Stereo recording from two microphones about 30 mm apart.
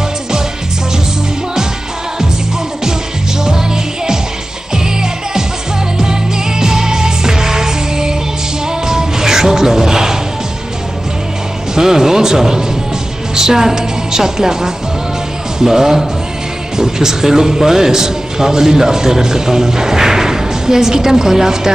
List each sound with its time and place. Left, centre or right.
3.4 s music: right
11.7 s a woman's voice: centre